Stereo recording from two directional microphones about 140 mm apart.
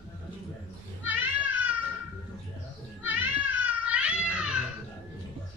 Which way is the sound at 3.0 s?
10° right (ahead or behind).